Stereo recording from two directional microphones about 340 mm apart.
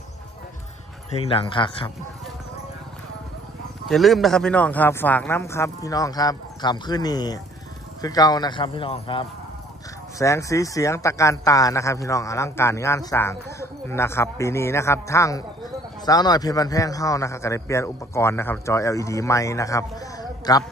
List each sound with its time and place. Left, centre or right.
1.2 s speech: centre
3.9 s speech: centre